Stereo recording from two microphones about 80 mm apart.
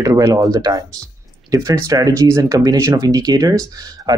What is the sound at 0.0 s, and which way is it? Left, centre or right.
Speech, right.